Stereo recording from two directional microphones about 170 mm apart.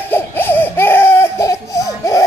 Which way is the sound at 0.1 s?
10° left (ahead or behind).